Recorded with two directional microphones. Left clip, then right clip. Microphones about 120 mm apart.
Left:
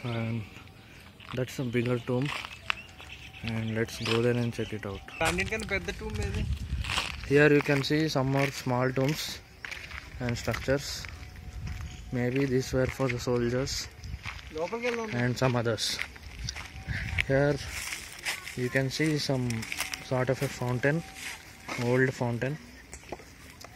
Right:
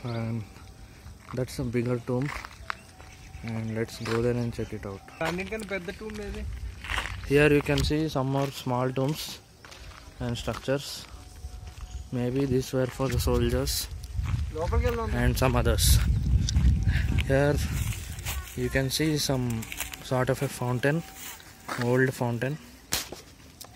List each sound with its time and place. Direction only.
0.0 s speech: centre (ahead or behind)
2.1 s a sound: 5° left (ahead or behind)
3.4 s speech: 5° right (ahead or behind)
5.2 s speech: 45° right (ahead or behind)
6.8 s walk: 5° left (ahead or behind)
7.2 s speech: 5° right (ahead or behind)
8.0 s speech: 15° left (ahead or behind)
8.3 s speech: centre (ahead or behind)
12.1 s speech: centre (ahead or behind)